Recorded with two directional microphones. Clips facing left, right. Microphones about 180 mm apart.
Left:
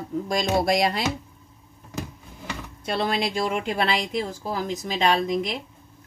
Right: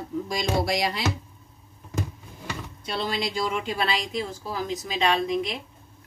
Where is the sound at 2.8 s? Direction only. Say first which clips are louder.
Left 4 dB; 55° left (ahead or behind).